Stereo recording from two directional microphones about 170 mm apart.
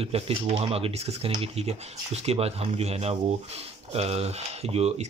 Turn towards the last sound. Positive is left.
turn(degrees=-40)  # may be behind; listen again after turning